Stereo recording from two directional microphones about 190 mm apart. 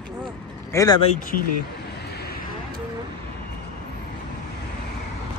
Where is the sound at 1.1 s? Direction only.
45° left (ahead or behind).